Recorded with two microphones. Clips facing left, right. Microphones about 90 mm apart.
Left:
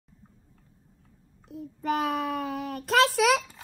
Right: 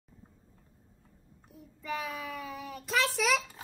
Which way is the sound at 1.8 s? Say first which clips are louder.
Left 9 dB; 65° left (ahead or behind).